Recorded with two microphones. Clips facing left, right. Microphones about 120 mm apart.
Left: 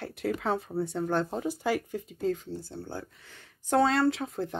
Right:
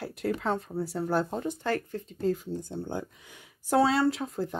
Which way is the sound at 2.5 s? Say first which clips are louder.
Right 4 dB; 20° right (ahead or behind).